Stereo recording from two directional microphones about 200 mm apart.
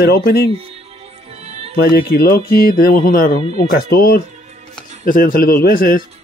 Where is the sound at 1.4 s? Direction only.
30° right (ahead or behind).